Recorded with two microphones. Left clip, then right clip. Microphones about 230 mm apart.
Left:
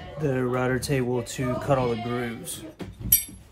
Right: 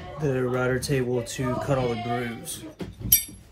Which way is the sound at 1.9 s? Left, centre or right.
Left.